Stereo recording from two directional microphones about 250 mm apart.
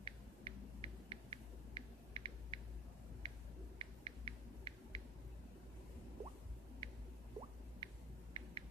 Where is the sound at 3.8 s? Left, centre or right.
Right.